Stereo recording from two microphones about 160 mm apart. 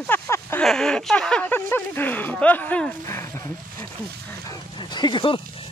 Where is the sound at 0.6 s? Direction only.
5° left (ahead or behind).